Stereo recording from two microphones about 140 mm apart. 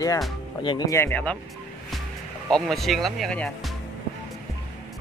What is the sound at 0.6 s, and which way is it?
Speech, 35° left (ahead or behind).